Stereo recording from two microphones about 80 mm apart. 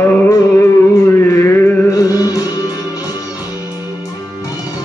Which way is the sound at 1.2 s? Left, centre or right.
Left.